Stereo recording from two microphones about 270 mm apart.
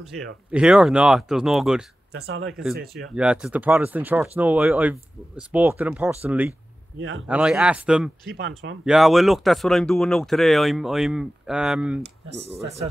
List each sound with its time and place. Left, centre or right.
0.5 s speech: centre
2.1 s speech: right
3.1 s speech: centre
7.0 s speech: right
7.2 s speech: centre
8.4 s speech: right
8.8 s speech: centre
12.0 s speech: right